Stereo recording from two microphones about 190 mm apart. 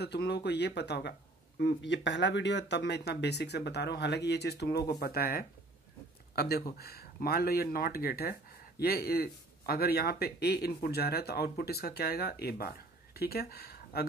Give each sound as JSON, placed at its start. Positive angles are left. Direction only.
{"t": 0.0, "sound": "speech", "side_deg": 60}